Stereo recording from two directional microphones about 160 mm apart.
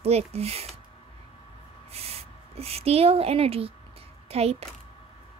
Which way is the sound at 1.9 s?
40° right (ahead or behind).